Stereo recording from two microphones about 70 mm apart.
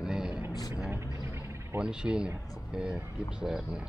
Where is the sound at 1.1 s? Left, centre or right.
Right.